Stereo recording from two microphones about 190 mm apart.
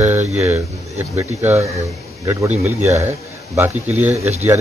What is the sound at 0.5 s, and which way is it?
Speech, 10° right (ahead or behind).